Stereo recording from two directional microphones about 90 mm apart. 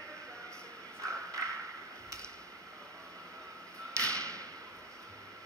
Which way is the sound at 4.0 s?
10° left (ahead or behind).